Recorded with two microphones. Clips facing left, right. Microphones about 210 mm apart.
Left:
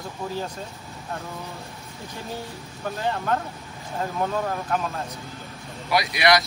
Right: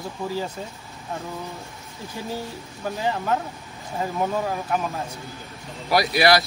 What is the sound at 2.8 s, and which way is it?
Speech, 10° right (ahead or behind).